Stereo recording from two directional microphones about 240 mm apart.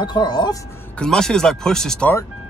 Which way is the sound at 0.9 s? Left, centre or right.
Centre.